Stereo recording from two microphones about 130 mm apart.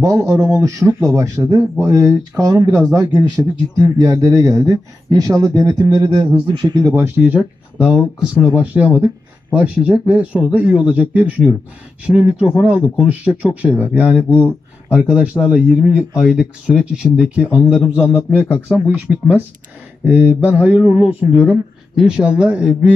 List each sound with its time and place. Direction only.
0.0 s a man's voice: 25° right (ahead or behind)
6.0 s speech: 45° right (ahead or behind)
7.0 s speech: 10° right (ahead or behind)
17.9 s a man's voice: 20° left (ahead or behind)
18.3 s speech: 10° right (ahead or behind)